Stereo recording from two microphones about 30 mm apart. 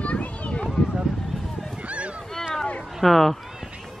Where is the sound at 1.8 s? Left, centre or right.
Right.